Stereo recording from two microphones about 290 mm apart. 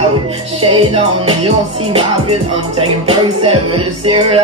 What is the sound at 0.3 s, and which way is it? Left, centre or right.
Music, centre.